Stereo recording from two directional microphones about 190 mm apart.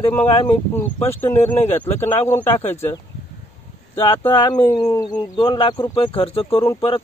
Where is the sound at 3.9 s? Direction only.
25° left (ahead or behind).